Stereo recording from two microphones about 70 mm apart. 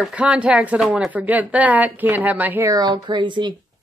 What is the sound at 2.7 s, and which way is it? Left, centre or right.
Speech, right.